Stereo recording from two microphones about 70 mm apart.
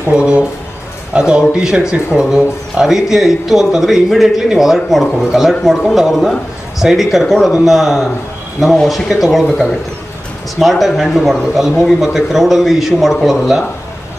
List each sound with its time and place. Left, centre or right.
0.1 s speech: centre